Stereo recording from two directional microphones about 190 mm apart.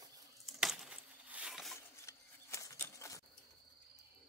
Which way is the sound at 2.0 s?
15° left (ahead or behind).